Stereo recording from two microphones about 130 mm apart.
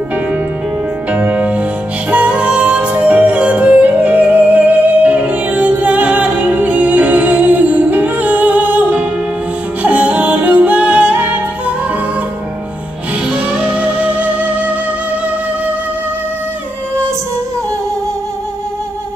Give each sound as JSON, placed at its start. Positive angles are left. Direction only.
{"t": 1.1, "sound": "music", "side_deg": -10}
{"t": 13.3, "sound": "music", "side_deg": -5}